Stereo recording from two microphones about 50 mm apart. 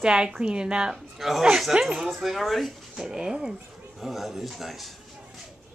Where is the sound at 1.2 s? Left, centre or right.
Centre.